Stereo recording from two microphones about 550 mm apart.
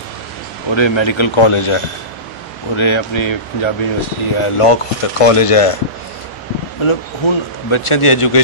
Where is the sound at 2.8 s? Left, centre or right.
Left.